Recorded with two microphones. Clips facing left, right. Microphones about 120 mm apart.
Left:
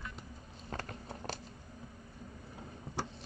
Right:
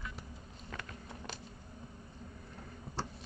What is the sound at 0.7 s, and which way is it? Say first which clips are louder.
Walk: left 4 dB; 35° left (ahead or behind).